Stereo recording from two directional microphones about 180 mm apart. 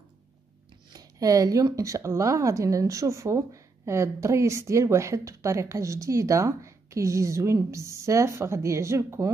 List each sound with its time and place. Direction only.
0.9 s speech: 20° right (ahead or behind)